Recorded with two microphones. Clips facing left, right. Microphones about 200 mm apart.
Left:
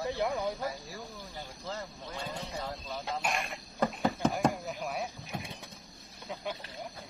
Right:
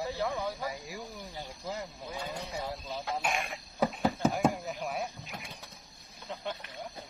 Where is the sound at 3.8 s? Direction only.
Centre (ahead or behind).